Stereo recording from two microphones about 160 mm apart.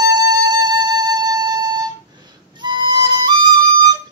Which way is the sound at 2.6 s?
30° right (ahead or behind).